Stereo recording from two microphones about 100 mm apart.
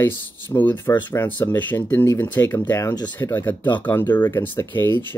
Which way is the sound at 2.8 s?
40° left (ahead or behind).